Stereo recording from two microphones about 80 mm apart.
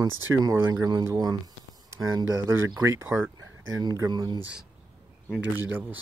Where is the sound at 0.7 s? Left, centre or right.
Right.